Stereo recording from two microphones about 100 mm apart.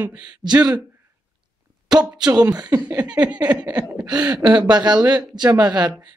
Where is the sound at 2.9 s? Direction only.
15° right (ahead or behind).